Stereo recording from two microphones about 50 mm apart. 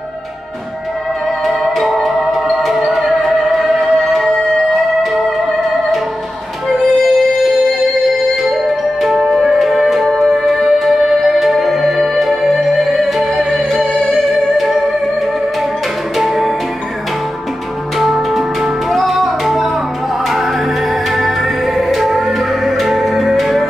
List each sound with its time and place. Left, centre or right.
1.4 s music: centre
8.6 s music: centre
16.2 s music: centre
17.9 s music: centre
21.1 s music: centre